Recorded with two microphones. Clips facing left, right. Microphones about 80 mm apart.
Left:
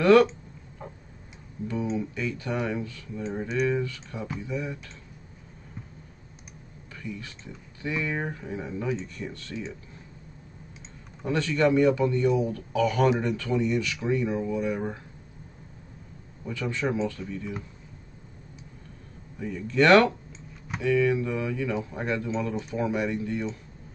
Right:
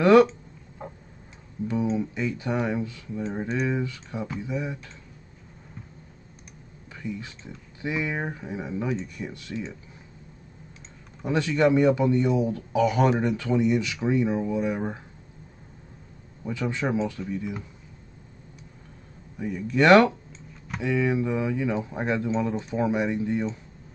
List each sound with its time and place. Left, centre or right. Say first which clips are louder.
1.6 s speech: right 3 dB; right
7.0 s speech: right 3 dB; centre
11.2 s speech: right 2 dB; centre
16.4 s speech: right 1 dB; centre
19.3 s speech: even; centre